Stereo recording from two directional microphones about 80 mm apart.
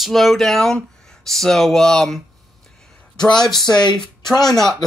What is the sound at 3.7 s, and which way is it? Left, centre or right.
Speech, left.